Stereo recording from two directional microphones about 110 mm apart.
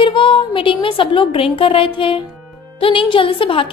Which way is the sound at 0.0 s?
50° left (ahead or behind).